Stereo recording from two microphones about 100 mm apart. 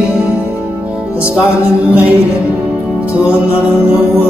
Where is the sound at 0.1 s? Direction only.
10° right (ahead or behind).